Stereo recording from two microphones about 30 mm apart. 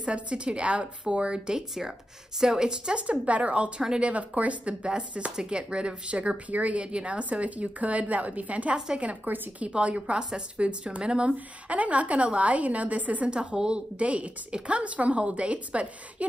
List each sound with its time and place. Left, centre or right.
0.0 s a woman's voice: right
1.5 s a woman's voice: centre
3.0 s speech: right
5.5 s a woman's voice: right
6.5 s speech: right
8.7 s a woman's voice: right
9.3 s a woman's voice: right
9.7 s speech: right
10.1 s a woman's voice: right
11.3 s a woman's voice: right
13.3 s a woman's voice: right
13.9 s speech: right